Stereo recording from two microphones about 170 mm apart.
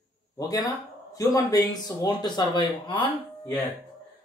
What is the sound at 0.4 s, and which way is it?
Speech, 20° left (ahead or behind).